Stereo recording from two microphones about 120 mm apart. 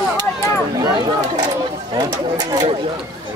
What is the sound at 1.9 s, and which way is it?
Speech, 35° right (ahead or behind).